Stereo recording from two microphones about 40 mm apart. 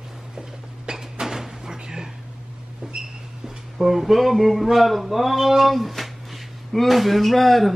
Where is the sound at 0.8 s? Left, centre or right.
Centre.